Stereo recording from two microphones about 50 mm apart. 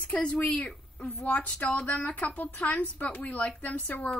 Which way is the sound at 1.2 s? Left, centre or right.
Left.